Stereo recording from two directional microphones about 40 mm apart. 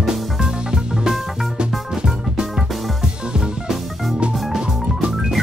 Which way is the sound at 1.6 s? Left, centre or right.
Right.